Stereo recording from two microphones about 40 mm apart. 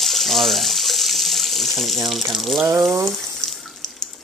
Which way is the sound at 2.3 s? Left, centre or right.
Centre.